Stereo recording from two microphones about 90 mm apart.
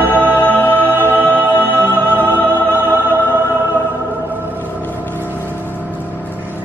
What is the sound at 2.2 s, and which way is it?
Music, 25° left (ahead or behind).